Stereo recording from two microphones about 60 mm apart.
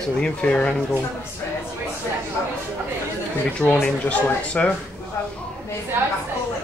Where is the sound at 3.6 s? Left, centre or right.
Left.